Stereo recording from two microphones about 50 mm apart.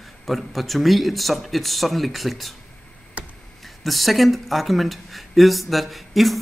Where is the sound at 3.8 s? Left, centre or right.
Centre.